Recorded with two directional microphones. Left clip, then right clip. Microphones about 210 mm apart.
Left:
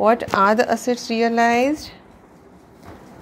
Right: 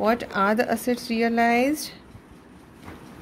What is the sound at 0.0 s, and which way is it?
Speech, centre (ahead or behind).